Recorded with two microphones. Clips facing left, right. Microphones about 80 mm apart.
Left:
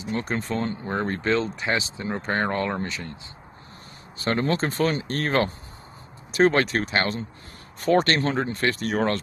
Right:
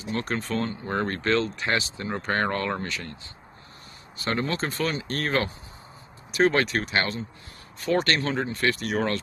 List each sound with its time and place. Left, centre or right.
0.2 s speech: centre
4.2 s speech: left